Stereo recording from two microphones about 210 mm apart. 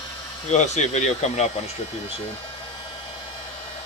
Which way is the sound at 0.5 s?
35° left (ahead or behind).